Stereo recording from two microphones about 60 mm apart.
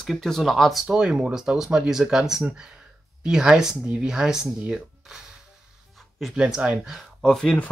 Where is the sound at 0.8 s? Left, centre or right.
Centre.